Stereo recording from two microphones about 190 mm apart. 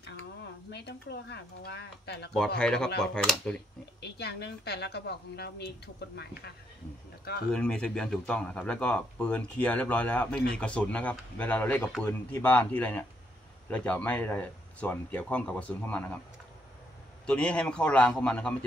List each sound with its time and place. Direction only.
0.7 s a woman's voice: 60° left (ahead or behind)
2.3 s speech: 5° left (ahead or behind)
4.0 s a woman's voice: 60° left (ahead or behind)
7.5 s speech: 5° left (ahead or behind)
17.3 s speech: 5° left (ahead or behind)